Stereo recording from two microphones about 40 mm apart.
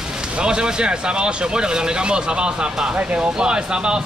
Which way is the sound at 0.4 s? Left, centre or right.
Right.